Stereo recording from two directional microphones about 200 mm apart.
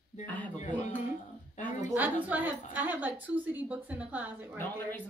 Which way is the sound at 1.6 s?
35° left (ahead or behind).